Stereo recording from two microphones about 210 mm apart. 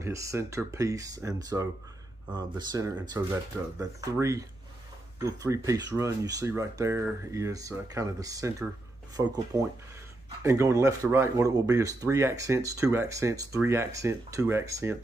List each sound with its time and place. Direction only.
0.0 s speech: 15° right (ahead or behind)